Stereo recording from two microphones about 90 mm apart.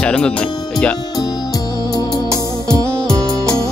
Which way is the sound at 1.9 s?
45° left (ahead or behind).